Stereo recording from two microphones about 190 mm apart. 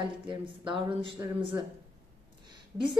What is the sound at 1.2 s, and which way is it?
Speech, 10° right (ahead or behind).